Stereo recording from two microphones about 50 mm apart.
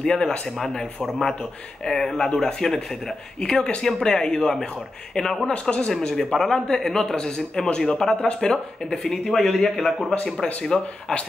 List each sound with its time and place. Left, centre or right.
0.0 s a man's voice: centre
5.5 s a man's voice: left
5.9 s a man's voice: centre